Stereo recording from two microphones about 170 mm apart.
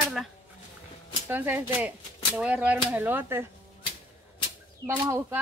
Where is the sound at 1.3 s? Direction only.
10° right (ahead or behind).